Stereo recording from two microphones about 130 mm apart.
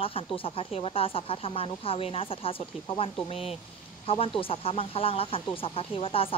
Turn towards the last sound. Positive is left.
turn(degrees=45)  # may be behind; listen again after turning